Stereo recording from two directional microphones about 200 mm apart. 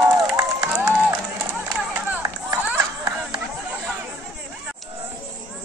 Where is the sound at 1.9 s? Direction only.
10° right (ahead or behind).